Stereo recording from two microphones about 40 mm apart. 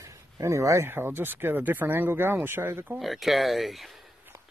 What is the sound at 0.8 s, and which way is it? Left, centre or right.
Speech, right.